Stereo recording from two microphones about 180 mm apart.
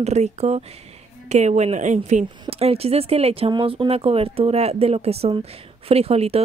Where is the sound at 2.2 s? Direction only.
30° right (ahead or behind).